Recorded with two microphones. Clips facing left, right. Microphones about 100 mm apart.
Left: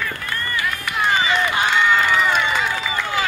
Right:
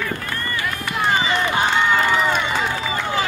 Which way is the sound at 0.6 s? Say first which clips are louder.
Left 1 dB; 20° right (ahead or behind).